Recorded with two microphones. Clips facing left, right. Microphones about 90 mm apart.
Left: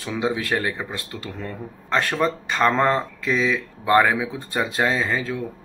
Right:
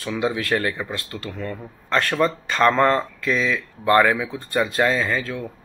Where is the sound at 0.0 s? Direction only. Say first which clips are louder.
Right 1 dB; 20° left (ahead or behind).